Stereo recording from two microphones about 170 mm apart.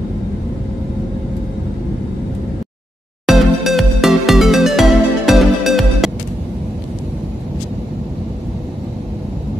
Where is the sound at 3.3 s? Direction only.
Centre (ahead or behind).